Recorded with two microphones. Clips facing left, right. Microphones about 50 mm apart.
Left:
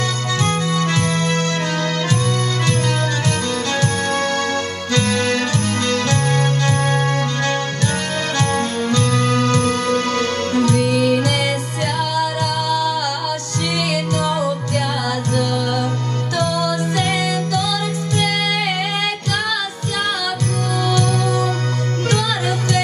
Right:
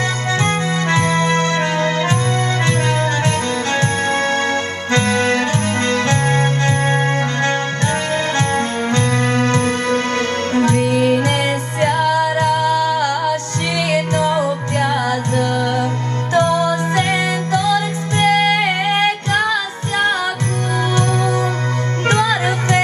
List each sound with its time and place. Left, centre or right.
0.4 s music: right